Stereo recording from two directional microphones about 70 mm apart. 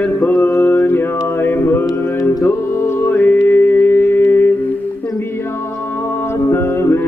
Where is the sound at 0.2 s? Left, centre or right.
Left.